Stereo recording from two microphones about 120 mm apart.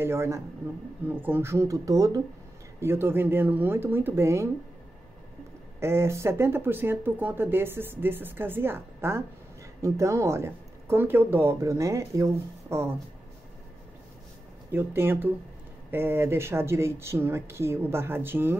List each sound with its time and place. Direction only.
0.0 s speech: 20° right (ahead or behind)
2.8 s speech: 20° right (ahead or behind)
5.8 s speech: 20° right (ahead or behind)
14.7 s speech: 15° right (ahead or behind)